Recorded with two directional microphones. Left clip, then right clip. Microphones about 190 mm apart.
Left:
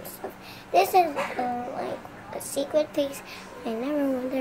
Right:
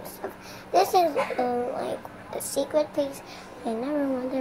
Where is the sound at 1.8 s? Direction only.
Centre (ahead or behind).